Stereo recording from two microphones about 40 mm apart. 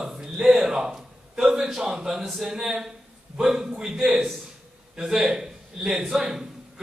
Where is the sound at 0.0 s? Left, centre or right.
Centre.